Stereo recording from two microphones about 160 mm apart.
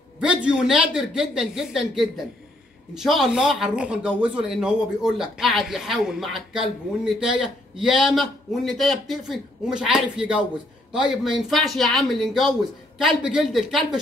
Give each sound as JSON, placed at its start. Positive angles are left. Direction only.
{"t": 0.2, "sound": "a man's voice", "side_deg": -5}